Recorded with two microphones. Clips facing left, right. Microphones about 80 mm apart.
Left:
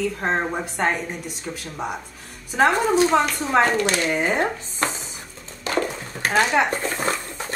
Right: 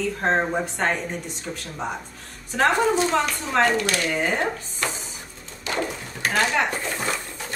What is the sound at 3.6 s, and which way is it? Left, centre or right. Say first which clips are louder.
Speech: left 1 dB; left.